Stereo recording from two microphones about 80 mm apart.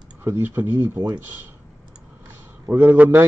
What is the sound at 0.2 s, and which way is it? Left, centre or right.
Speech, right.